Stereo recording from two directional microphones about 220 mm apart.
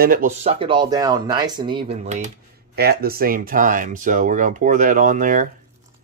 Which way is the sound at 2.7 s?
45° right (ahead or behind).